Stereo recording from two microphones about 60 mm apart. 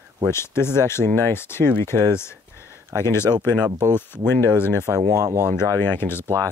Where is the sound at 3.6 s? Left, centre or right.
Right.